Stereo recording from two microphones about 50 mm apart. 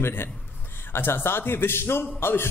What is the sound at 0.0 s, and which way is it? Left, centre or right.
A man's voice, left.